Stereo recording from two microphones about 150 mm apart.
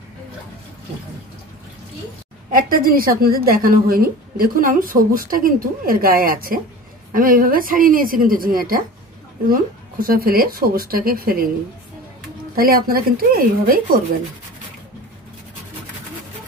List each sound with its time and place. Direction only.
2.5 s a woman's voice: 70° right (ahead or behind)
12.5 s speech: 75° right (ahead or behind)